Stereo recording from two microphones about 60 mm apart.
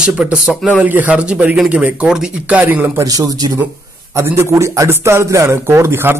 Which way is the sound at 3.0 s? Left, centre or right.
Right.